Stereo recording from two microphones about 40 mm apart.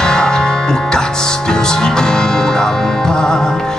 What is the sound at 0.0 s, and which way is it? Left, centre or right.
Music, centre.